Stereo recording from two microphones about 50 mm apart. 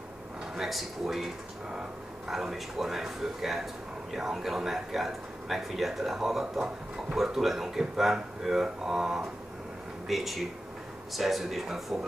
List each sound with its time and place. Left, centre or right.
0.6 s speech: centre